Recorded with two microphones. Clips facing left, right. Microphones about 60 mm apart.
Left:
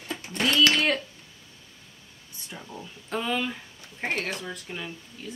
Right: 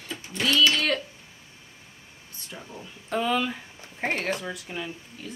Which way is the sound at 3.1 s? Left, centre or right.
Centre.